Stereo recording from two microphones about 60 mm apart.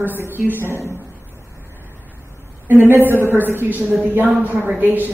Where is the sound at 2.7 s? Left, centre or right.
Right.